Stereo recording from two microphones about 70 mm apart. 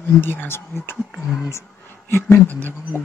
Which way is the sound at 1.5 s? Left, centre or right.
Left.